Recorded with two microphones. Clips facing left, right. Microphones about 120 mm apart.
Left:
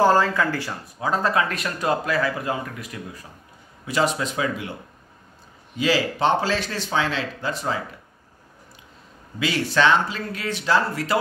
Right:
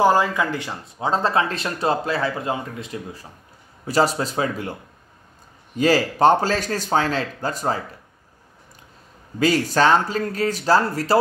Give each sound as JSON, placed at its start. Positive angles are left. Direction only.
{"t": 0.0, "sound": "speech", "side_deg": -15}
{"t": 5.8, "sound": "speech", "side_deg": -45}
{"t": 9.4, "sound": "speech", "side_deg": -40}